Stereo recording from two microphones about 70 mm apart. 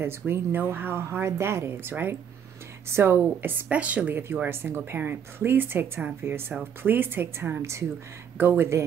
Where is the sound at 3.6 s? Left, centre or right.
Centre.